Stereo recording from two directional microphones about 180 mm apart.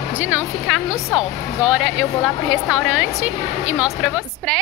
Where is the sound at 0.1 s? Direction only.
10° right (ahead or behind).